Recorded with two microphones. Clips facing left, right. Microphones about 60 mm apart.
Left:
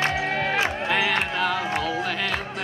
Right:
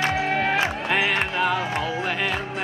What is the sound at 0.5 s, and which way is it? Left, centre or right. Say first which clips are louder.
Music: right 1 dB; centre.